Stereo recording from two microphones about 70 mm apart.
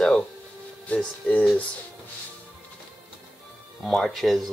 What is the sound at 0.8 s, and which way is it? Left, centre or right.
Speech, centre.